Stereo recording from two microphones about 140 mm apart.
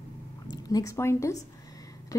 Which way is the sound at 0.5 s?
25° left (ahead or behind).